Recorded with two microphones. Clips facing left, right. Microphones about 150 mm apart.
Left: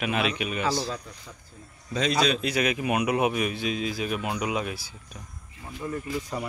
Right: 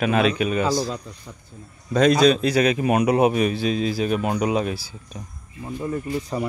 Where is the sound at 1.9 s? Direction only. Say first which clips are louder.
Right 9 dB; 50° right (ahead or behind); by 4.9 s 30° right (ahead or behind).